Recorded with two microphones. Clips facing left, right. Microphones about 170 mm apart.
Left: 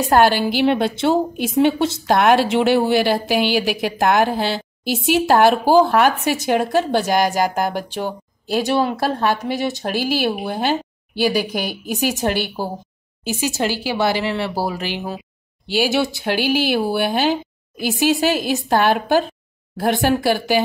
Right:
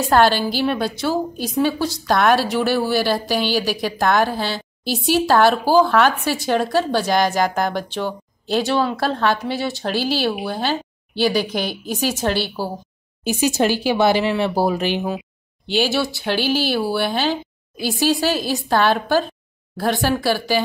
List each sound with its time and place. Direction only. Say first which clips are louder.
0.0 s a woman's voice: left 1 dB; 15° left (ahead or behind)
0.7 s a woman's voice: left 4 dB; 25° left (ahead or behind)
13.2 s speech: right 3 dB; 15° right (ahead or behind)
15.6 s speech: even; 5° left (ahead or behind)
15.9 s a woman's voice: left 2 dB; 20° left (ahead or behind)